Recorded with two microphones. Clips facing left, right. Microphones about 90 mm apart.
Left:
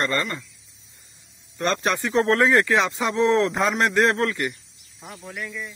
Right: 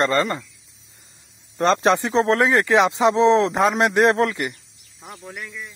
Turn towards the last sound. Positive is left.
turn(degrees=-5)  # may be behind; listen again after turning